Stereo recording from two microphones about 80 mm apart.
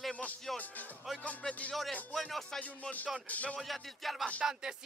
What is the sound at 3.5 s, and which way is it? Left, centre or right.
Speech, centre.